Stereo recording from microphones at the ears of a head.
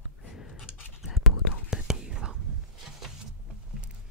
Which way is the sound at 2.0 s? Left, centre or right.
Right.